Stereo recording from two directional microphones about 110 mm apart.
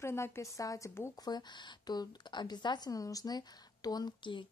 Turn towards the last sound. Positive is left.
turn(degrees=45)  # may be behind; listen again after turning